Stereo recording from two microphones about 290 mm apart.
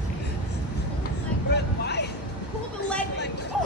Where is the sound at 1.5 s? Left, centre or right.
Left.